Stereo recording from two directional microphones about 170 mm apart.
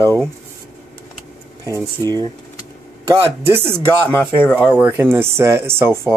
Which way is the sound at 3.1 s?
15° right (ahead or behind).